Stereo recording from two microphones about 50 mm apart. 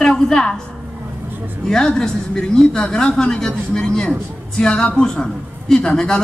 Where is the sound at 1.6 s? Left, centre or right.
Centre.